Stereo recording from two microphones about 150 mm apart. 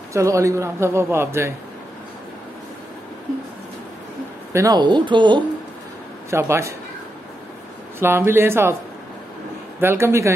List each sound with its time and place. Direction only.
0.1 s a man's voice: 20° right (ahead or behind)
4.5 s speech: 20° right (ahead or behind)
6.3 s a man's voice: 15° right (ahead or behind)
8.0 s a man's voice: 15° right (ahead or behind)
9.8 s a man's voice: 15° right (ahead or behind)